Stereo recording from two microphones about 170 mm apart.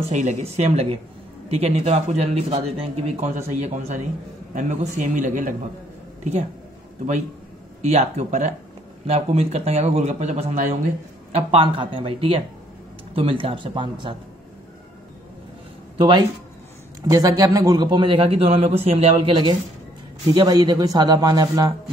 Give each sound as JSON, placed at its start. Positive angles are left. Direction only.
{"t": 0.1, "sound": "speech", "side_deg": -40}
{"t": 7.8, "sound": "speech", "side_deg": -40}
{"t": 16.0, "sound": "speech", "side_deg": -25}